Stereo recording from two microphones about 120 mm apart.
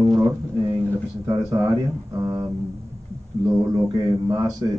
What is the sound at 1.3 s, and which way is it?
A man's voice, 25° right (ahead or behind).